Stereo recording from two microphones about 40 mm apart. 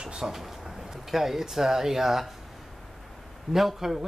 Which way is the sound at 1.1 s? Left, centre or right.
Centre.